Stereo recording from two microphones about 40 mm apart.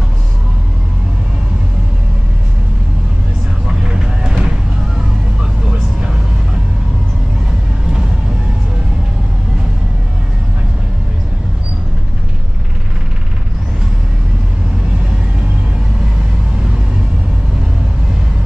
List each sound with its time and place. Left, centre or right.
3.6 s vehicle: centre